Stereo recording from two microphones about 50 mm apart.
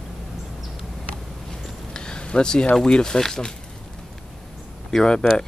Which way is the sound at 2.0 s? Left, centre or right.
Centre.